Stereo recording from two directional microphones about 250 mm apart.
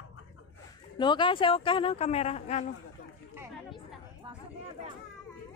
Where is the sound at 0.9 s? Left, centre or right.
Centre.